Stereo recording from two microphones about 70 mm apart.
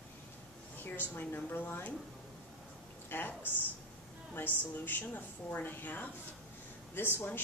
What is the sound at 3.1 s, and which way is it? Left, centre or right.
A woman's voice, left.